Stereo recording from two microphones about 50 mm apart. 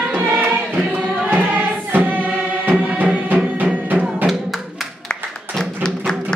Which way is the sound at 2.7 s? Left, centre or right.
Right.